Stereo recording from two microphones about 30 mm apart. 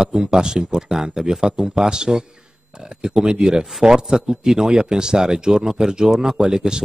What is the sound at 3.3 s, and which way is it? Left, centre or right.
Speech, centre.